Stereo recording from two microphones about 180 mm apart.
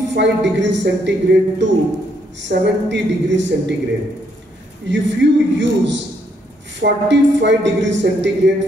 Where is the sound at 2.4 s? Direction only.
80° right.